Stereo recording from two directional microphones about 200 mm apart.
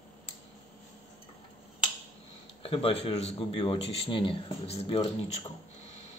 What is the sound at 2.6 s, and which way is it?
Speech, 30° left (ahead or behind).